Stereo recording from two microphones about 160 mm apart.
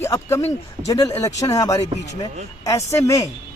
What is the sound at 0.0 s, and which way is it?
Speech, 15° left (ahead or behind).